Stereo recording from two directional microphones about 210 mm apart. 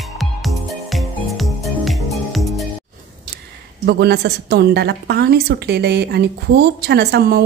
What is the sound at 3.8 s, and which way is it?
A woman's voice, 55° right (ahead or behind).